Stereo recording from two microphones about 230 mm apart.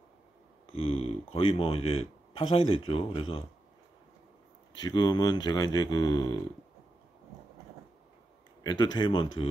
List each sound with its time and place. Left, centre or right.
0.7 s speech: left
4.7 s speech: centre
8.6 s speech: centre